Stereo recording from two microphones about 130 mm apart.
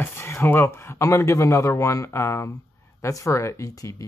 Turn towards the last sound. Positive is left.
turn(degrees=25)  # may be behind; listen again after turning